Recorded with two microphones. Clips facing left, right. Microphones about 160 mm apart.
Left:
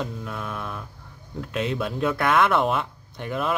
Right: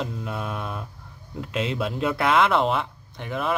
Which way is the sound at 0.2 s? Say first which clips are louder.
Right 2 dB; 15° right (ahead or behind).